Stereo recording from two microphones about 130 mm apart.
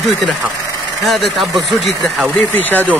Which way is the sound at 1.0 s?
Centre (ahead or behind).